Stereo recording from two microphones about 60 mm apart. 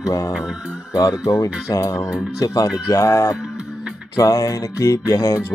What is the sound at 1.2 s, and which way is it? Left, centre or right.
Speech, left.